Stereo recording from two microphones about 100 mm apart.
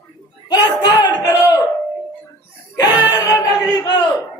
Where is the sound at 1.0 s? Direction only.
20° right (ahead or behind).